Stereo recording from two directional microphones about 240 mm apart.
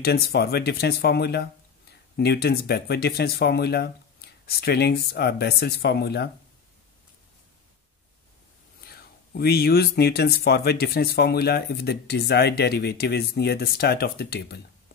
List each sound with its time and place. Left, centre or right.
0.0 s speech: left
8.8 s speech: left